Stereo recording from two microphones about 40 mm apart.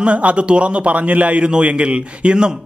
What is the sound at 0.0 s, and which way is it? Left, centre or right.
A man's voice, right.